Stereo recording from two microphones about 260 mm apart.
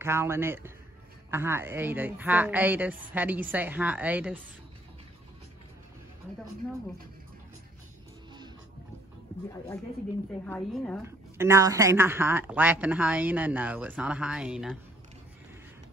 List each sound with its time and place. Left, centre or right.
0.0 s a woman's voice: centre
10.4 s a woman's voice: centre
11.1 s a woman's voice: centre